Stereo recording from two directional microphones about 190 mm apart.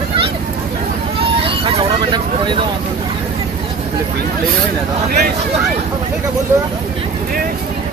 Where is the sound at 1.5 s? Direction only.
30° right (ahead or behind).